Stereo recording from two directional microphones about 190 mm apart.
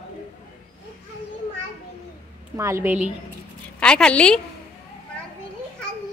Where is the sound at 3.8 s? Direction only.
5° left (ahead or behind).